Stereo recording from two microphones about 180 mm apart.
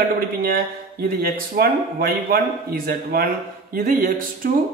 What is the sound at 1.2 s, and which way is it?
A man's voice, 60° right (ahead or behind).